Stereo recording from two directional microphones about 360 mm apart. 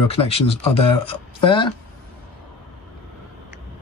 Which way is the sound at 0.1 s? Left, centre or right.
Centre.